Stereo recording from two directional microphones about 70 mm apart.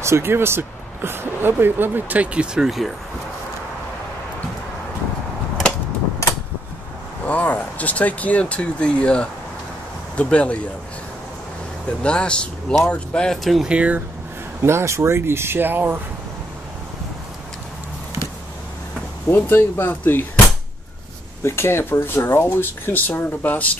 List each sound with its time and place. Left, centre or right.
0.0 s speech: right
2.5 s speech: centre
7.2 s speech: left
12.0 s speech: centre
13.4 s speech: centre
13.7 s speech: centre
14.6 s speech: right
19.2 s speech: left
21.4 s speech: left